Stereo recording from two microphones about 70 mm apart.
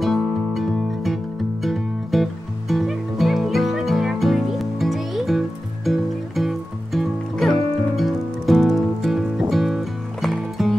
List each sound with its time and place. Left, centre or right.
0.0 s music: centre